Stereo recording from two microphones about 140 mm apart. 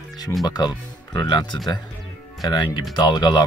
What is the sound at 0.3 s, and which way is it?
Speech, 15° left (ahead or behind).